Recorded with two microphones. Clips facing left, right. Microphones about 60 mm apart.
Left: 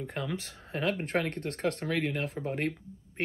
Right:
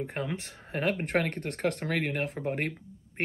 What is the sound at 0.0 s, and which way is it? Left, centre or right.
Speech, right.